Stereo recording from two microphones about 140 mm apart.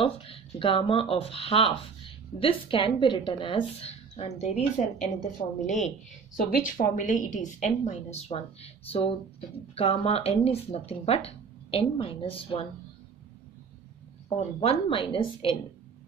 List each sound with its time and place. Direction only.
0.0 s a woman's voice: 40° left (ahead or behind); by 5.9 s 55° left (ahead or behind)
6.3 s a woman's voice: 80° left; by 12.6 s 40° left (ahead or behind)
14.3 s speech: 45° left (ahead or behind)